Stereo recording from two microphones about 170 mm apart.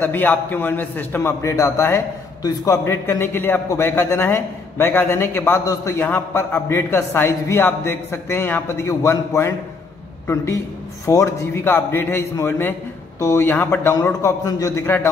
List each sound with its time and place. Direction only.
0.0 s a man's voice: 10° left (ahead or behind)